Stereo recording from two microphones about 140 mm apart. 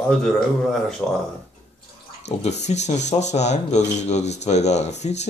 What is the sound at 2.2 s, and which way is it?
Speech, 55° left (ahead or behind).